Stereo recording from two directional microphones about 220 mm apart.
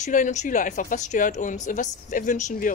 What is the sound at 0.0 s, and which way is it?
Speech, 35° left (ahead or behind).